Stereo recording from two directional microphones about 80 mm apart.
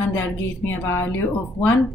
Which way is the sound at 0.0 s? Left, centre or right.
Left.